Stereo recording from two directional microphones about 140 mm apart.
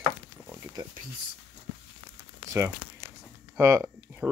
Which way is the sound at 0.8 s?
35° right (ahead or behind).